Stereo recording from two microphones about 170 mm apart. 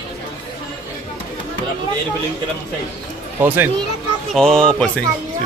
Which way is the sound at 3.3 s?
10° right (ahead or behind).